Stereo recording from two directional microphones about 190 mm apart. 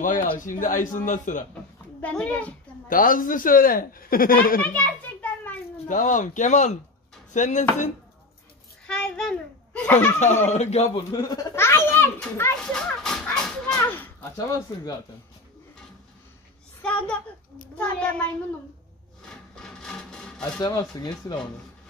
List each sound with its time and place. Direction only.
0.0 s speech: 45° left (ahead or behind)
2.0 s a child's voice: 5° left (ahead or behind)
2.9 s speech: 45° left (ahead or behind)
4.6 s a child's voice: 10° left (ahead or behind)
5.9 s speech: 45° left (ahead or behind)
8.8 s a child's voice: 5° left (ahead or behind)
10.1 s speech: 40° left (ahead or behind)
11.1 s a child's voice: 20° left (ahead or behind)
17.7 s a child's voice: 5° left (ahead or behind)
19.2 s a sound: 5° left (ahead or behind)
20.5 s speech: 20° left (ahead or behind)